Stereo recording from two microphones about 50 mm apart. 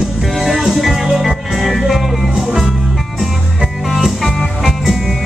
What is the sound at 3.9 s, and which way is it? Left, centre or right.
Music, centre.